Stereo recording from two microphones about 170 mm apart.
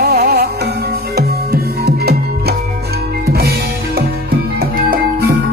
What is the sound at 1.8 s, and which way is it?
Music, 70° right (ahead or behind).